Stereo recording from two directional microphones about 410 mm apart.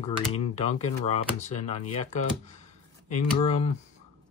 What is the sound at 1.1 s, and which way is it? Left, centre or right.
Speech, centre.